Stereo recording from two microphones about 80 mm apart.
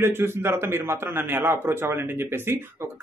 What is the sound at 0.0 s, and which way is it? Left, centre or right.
A man's voice, right.